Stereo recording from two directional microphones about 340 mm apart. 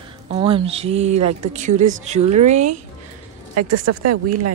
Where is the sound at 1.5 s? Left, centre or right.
Right.